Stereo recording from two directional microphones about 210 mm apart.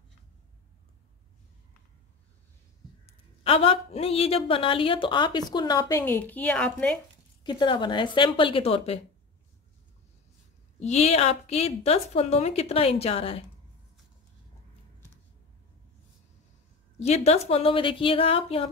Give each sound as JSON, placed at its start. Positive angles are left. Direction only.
{"t": 3.1, "sound": "a woman's voice", "side_deg": 25}
{"t": 7.4, "sound": "a woman's voice", "side_deg": 20}
{"t": 10.8, "sound": "a woman's voice", "side_deg": 30}
{"t": 17.0, "sound": "a woman's voice", "side_deg": 30}